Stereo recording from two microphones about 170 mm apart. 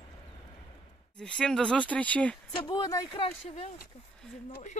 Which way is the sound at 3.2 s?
40° left (ahead or behind).